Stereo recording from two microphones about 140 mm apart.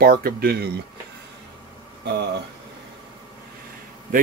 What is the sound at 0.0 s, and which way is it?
Speech, 90° right.